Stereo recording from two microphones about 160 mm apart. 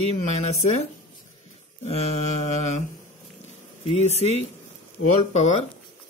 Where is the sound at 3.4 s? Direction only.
45° left (ahead or behind).